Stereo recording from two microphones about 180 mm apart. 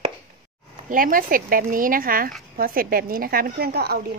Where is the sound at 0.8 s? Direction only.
50° right (ahead or behind).